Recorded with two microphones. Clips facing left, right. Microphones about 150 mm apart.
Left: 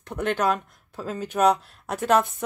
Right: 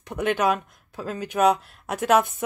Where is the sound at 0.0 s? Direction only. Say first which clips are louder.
Right 1 dB; 5° right (ahead or behind).